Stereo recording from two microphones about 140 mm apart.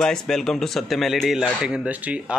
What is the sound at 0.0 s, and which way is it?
Speech, 5° left (ahead or behind).